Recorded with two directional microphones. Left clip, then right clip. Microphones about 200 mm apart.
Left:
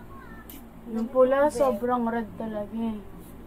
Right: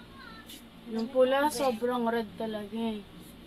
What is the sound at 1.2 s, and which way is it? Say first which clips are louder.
Speech: left 5 dB; 35° right (ahead or behind).